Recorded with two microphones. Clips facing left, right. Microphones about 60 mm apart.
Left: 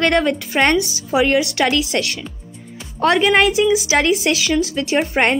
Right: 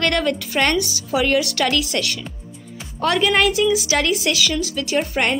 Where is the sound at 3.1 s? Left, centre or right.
Left.